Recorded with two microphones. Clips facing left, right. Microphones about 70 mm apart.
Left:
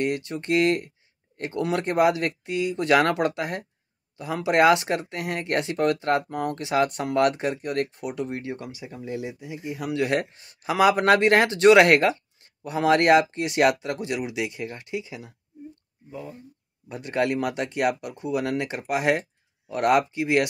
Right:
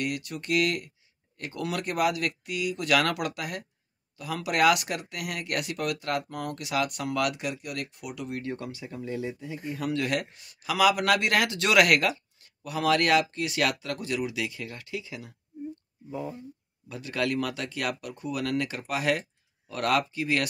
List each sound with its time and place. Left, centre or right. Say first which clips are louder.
0.0 s speech: left 6 dB; left
8.5 s speech: even; centre
10.0 s speech: left 4 dB; left
16.1 s speech: right 3 dB; right
16.9 s speech: left 4 dB; left